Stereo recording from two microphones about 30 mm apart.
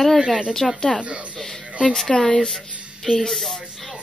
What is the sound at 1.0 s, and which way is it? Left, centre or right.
Speech, right.